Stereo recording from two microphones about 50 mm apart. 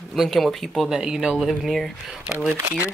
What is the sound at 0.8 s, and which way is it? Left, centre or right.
Speech, centre.